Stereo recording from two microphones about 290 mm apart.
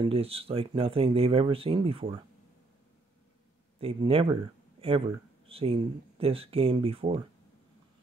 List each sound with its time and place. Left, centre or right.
0.0 s speech: centre
3.8 s speech: centre